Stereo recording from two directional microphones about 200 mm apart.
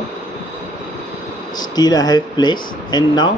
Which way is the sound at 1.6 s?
20° left (ahead or behind).